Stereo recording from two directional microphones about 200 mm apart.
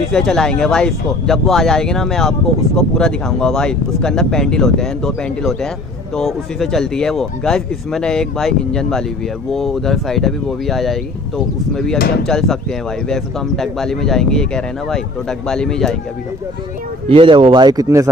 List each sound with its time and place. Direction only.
0.1 s speech: centre (ahead or behind)
17.1 s speech: 25° right (ahead or behind)